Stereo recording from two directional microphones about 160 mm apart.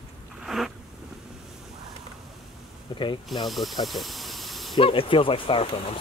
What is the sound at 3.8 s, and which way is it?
Snake, centre (ahead or behind).